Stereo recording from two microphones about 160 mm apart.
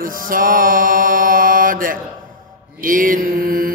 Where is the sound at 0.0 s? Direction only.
60° right (ahead or behind).